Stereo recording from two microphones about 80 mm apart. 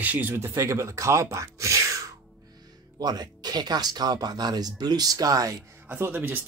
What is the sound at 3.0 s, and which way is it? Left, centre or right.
Speech, right.